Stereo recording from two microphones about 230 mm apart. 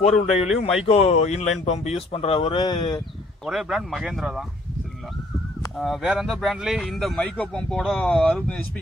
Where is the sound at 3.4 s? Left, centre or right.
Centre.